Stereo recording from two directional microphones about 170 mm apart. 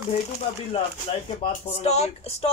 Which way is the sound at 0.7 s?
35° left (ahead or behind).